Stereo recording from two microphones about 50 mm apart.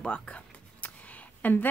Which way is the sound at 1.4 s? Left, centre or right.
Left.